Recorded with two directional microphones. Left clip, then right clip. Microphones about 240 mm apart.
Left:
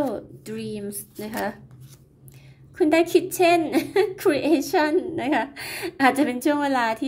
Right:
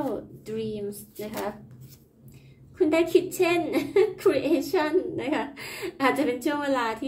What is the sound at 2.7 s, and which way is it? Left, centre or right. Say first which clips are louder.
A woman's voice: left 3 dB; left.